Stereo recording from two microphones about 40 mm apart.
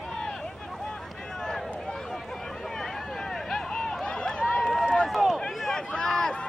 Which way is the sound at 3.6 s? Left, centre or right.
Centre.